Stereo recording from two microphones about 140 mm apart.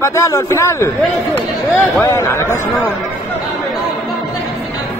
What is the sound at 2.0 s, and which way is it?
Speech, 20° left (ahead or behind).